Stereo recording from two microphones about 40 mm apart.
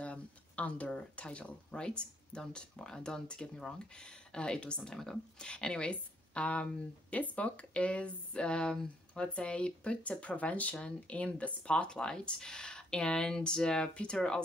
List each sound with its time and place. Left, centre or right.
0.0 s a woman's voice: left
4.9 s speech: centre
5.4 s a woman's voice: left